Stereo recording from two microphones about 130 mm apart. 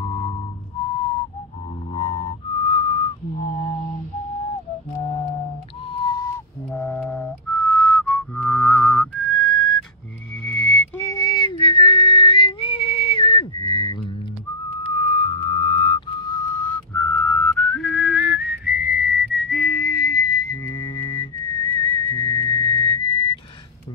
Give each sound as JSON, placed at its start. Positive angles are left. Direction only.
{"t": 0.0, "sound": "a sound", "side_deg": 35}
{"t": 2.0, "sound": "whistling", "side_deg": 40}
{"t": 5.0, "sound": "music", "side_deg": 45}
{"t": 5.9, "sound": "a sound", "side_deg": 30}
{"t": 6.7, "sound": "music", "side_deg": 10}
{"t": 11.0, "sound": "whistling", "side_deg": 25}
{"t": 15.5, "sound": "music", "side_deg": 40}
{"t": 16.3, "sound": "whistling", "side_deg": 20}
{"t": 19.5, "sound": "whistling", "side_deg": 15}
{"t": 19.8, "sound": "whistling", "side_deg": 30}
{"t": 20.6, "sound": "music", "side_deg": 30}
{"t": 22.1, "sound": "whistling", "side_deg": 35}